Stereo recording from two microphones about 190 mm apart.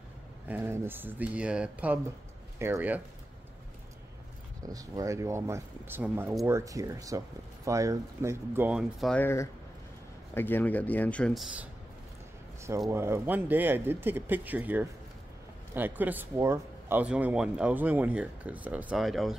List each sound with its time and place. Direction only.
0.5 s speech: 10° right (ahead or behind)
4.6 s speech: 20° right (ahead or behind); by 9.2 s centre (ahead or behind)
9.2 s speech: 15° left (ahead or behind)
12.9 s speech: 15° right (ahead or behind)